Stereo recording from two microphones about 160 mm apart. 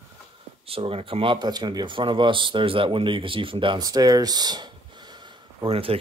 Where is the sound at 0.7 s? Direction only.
35° right (ahead or behind).